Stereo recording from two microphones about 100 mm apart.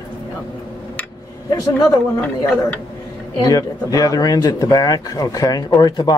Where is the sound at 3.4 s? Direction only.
35° left (ahead or behind).